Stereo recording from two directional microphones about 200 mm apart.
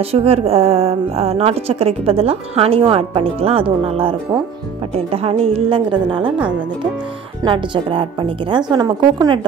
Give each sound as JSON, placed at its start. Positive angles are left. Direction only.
{"t": 0.0, "sound": "a woman's voice", "side_deg": -30}
{"t": 7.4, "sound": "a woman's voice", "side_deg": -25}